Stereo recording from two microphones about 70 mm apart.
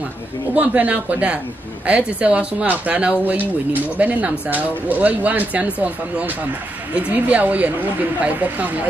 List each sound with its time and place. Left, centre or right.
0.6 s speech: right